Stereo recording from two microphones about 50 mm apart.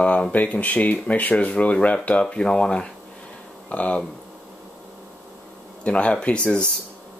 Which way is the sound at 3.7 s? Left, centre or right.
Left.